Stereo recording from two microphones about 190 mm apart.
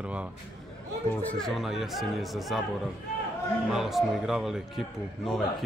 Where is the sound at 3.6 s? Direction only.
Centre (ahead or behind).